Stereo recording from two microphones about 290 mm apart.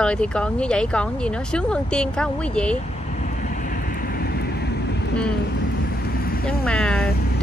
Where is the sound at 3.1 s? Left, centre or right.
Left.